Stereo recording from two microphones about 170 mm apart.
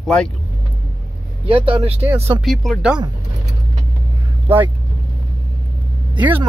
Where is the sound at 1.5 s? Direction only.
35° right (ahead or behind).